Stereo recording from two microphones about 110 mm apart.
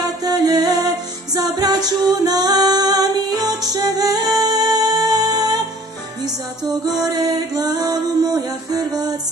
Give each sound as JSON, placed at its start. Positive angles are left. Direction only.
{"t": 0.0, "sound": "music", "side_deg": -35}
{"t": 6.7, "sound": "music", "side_deg": -35}